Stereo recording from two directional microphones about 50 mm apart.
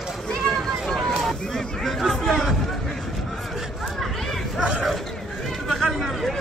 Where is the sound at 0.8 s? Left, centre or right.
Centre.